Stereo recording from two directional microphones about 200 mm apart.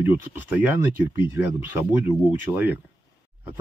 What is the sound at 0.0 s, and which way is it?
Speech, 5° right (ahead or behind).